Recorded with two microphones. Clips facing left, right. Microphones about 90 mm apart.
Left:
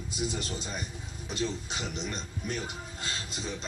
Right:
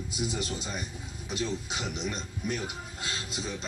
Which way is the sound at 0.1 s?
5° right (ahead or behind).